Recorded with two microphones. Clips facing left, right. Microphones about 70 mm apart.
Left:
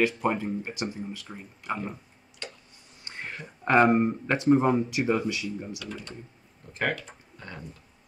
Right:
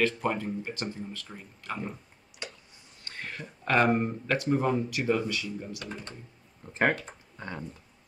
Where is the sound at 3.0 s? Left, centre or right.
Centre.